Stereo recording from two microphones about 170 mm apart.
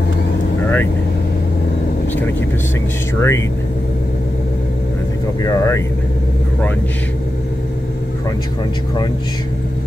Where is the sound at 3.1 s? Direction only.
15° left (ahead or behind).